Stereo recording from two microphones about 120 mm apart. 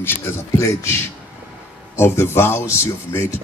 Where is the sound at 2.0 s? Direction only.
20° left (ahead or behind).